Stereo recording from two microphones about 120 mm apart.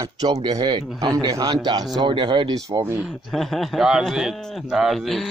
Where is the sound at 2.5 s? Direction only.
30° right (ahead or behind).